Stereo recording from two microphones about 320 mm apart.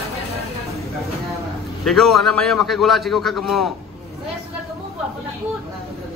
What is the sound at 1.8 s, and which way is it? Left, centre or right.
A man's voice, centre.